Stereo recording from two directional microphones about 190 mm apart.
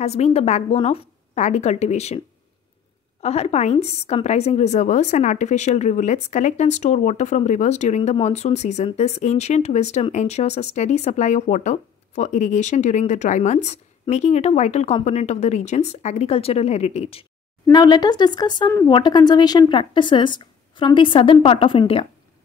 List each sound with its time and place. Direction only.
0.0 s a woman's voice: 35° left (ahead or behind)
17.6 s speech: 20° left (ahead or behind)